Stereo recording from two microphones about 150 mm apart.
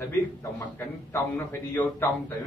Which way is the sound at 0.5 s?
15° left (ahead or behind).